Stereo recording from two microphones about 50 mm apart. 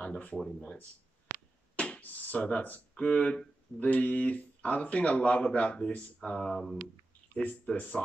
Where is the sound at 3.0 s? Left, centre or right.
Left.